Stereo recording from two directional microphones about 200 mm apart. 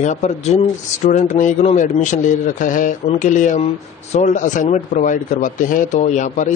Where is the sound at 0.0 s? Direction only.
35° left (ahead or behind).